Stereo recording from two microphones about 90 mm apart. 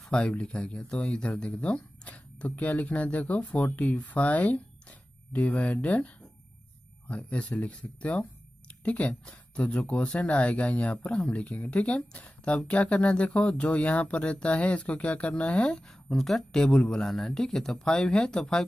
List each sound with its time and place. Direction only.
0.1 s speech: 10° left (ahead or behind)